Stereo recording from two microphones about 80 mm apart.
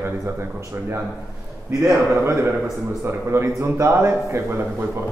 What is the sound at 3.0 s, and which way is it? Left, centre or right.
A man's voice, right.